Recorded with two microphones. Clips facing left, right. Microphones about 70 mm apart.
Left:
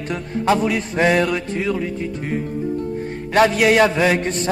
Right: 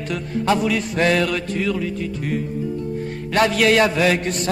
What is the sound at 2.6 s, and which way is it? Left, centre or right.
Music, left.